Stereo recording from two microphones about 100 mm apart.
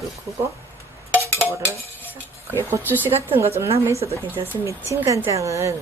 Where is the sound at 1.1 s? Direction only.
25° right (ahead or behind).